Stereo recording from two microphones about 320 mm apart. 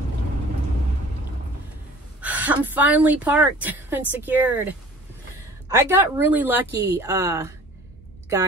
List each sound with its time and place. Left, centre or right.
2.1 s a woman's voice: centre
5.9 s speech: centre